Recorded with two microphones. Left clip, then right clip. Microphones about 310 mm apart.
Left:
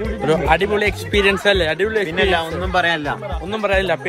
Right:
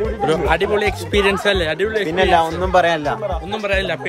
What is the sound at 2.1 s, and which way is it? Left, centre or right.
A man's voice, right.